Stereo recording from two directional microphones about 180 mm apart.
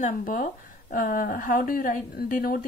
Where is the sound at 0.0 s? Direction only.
50° left (ahead or behind).